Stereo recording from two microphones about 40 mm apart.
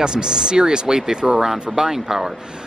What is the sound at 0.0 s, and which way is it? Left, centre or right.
Speech, centre.